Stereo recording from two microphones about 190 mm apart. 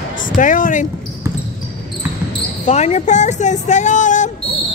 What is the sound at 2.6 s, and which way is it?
Speech, 35° left (ahead or behind).